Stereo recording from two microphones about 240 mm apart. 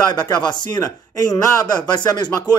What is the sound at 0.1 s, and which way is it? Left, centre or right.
Speech, centre.